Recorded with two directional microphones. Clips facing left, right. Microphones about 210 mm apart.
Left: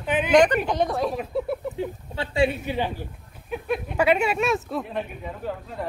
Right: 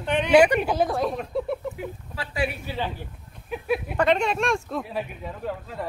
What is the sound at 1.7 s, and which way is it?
Speech, 25° left (ahead or behind).